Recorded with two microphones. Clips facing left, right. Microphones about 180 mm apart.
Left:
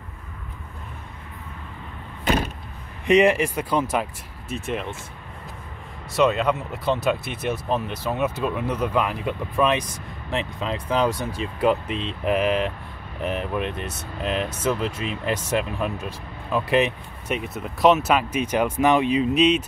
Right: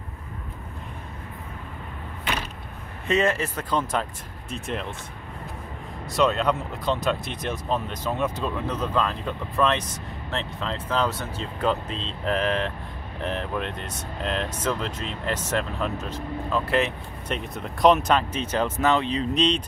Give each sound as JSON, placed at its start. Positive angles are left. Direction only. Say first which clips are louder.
{"t": 2.2, "sound": "vehicle", "louder": "left 8 dB", "side_deg": 50}
{"t": 3.1, "sound": "speech", "louder": "left 6 dB", "side_deg": 15}
{"t": 6.1, "sound": "speech", "louder": "left 2 dB", "side_deg": 5}
{"t": 17.4, "sound": "speech", "louder": "even", "side_deg": 5}